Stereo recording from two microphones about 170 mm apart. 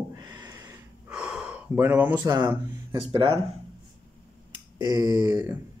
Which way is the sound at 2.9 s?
30° right (ahead or behind).